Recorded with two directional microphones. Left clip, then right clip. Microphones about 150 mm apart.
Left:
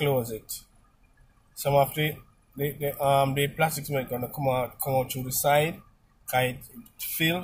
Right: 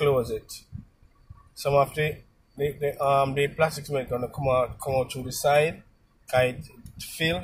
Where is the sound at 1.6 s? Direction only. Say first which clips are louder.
Right 1 dB; 10° left (ahead or behind).